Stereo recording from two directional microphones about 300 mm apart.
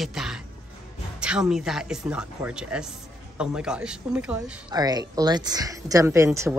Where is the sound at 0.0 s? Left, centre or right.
Centre.